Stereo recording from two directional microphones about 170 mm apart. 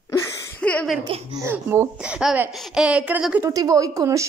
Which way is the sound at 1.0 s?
25° right (ahead or behind).